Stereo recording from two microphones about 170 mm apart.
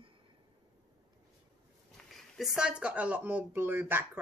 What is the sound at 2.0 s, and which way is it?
Speech, centre (ahead or behind).